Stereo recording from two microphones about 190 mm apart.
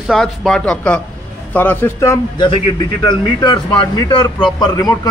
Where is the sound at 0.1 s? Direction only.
Centre (ahead or behind).